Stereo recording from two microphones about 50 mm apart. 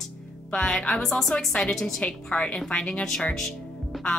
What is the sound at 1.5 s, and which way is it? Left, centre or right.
A woman's voice, centre.